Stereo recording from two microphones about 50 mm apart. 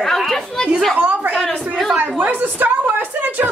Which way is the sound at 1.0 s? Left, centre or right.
Right.